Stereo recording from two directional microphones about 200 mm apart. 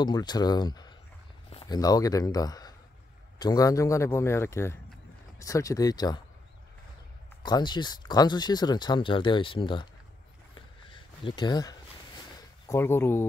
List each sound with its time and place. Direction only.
0.0 s a man's voice: 20° left (ahead or behind)
7.4 s speech: 20° left (ahead or behind)
11.2 s a man's voice: 20° left (ahead or behind)